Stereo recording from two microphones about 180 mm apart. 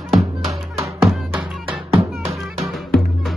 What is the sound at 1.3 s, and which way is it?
Music, 5° right (ahead or behind).